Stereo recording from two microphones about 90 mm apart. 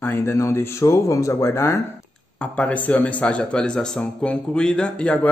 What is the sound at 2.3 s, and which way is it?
Speech, 15° left (ahead or behind).